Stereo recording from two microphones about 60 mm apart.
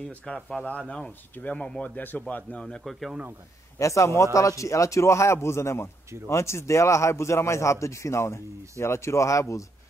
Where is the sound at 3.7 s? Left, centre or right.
Left.